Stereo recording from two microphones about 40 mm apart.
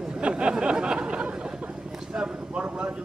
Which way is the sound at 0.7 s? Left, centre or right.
Right.